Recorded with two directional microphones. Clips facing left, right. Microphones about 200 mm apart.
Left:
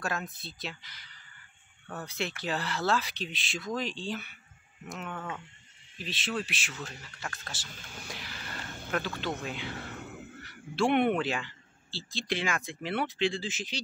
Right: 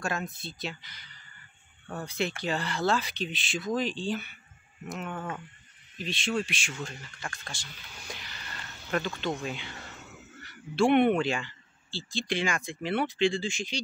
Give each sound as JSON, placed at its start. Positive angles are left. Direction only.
{"t": 0.0, "sound": "speech", "side_deg": 0}
{"t": 7.7, "sound": "speech", "side_deg": 45}
{"t": 8.1, "sound": "speech", "side_deg": 5}
{"t": 9.8, "sound": "a sound", "side_deg": 55}
{"t": 10.4, "sound": "speech", "side_deg": 0}